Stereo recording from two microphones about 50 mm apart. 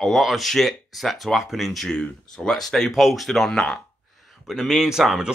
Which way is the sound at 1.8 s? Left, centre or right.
Centre.